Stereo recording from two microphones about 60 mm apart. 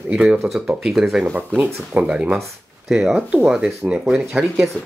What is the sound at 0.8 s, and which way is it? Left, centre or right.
Speech, centre.